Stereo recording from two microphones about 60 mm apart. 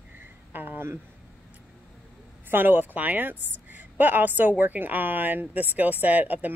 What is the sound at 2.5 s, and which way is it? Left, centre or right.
A woman's voice, right.